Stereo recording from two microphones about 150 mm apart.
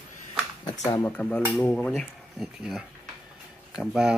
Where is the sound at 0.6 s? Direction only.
25° left (ahead or behind).